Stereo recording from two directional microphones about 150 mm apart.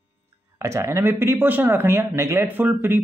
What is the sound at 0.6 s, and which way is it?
Speech, 20° right (ahead or behind).